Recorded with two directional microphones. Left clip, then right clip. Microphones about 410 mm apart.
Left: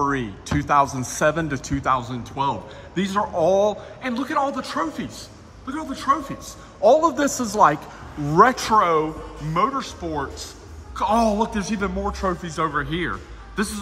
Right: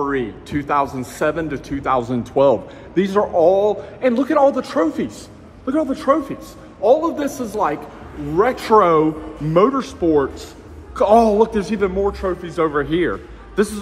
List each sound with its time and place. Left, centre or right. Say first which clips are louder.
0.0 s a man's voice: right 2 dB; centre
8.7 s a man's voice: right 9 dB; centre